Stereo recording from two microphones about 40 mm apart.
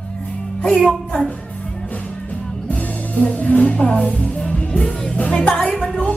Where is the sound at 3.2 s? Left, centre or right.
Left.